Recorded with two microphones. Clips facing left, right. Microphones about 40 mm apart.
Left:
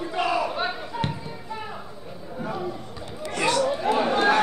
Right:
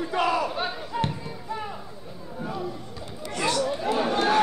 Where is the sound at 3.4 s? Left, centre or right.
Left.